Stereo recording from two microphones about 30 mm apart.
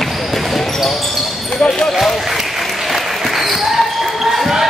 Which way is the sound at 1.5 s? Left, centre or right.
Left.